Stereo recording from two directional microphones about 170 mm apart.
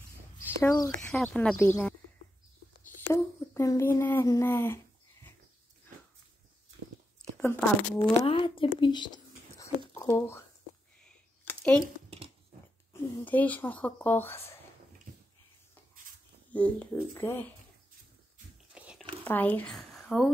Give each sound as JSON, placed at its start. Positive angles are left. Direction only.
{"t": 0.6, "sound": "speech", "side_deg": 15}
{"t": 0.8, "sound": "speech", "side_deg": 5}
{"t": 3.1, "sound": "speech", "side_deg": 15}
{"t": 7.3, "sound": "speech", "side_deg": 10}
{"t": 8.2, "sound": "a woman's voice", "side_deg": 30}
{"t": 8.7, "sound": "a sound", "side_deg": 30}
{"t": 9.9, "sound": "speech", "side_deg": 20}
{"t": 11.1, "sound": "a sound", "side_deg": 10}
{"t": 13.2, "sound": "speech", "side_deg": 10}
{"t": 16.5, "sound": "speech", "side_deg": 10}
{"t": 18.8, "sound": "a sound", "side_deg": -5}
{"t": 19.2, "sound": "speech", "side_deg": 10}